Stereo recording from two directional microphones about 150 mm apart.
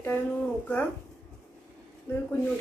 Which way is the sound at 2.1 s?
15° left (ahead or behind).